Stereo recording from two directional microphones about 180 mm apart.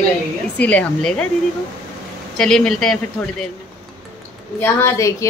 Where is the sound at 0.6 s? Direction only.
5° left (ahead or behind).